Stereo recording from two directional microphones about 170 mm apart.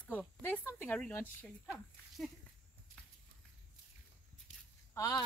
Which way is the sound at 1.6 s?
10° right (ahead or behind).